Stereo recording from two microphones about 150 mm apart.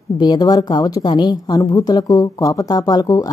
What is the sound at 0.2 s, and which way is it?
A woman's voice, 25° left (ahead or behind).